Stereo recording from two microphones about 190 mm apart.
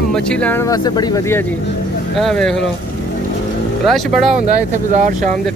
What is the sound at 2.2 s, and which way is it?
Speech, centre (ahead or behind).